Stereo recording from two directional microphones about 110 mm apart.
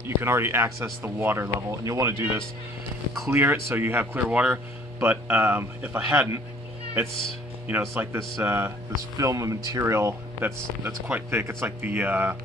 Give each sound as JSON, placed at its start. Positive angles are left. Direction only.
{"t": 0.0, "sound": "speech", "side_deg": -25}
{"t": 7.7, "sound": "speech", "side_deg": -20}